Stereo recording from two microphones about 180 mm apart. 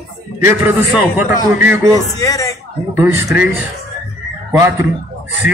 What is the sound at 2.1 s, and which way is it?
Speech, 20° left (ahead or behind).